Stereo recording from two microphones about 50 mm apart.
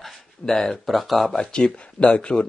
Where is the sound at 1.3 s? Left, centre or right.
Centre.